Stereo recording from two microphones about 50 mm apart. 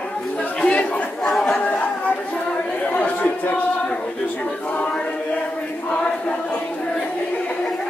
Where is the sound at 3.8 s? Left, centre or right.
Left.